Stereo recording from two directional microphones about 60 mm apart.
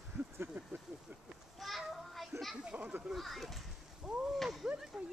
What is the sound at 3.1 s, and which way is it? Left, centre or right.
Speech, centre.